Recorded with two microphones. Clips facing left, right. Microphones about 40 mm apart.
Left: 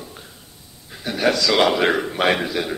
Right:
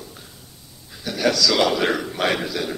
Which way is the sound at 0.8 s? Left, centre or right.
Left.